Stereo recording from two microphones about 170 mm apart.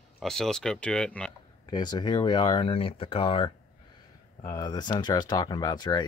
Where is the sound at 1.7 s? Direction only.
25° left (ahead or behind).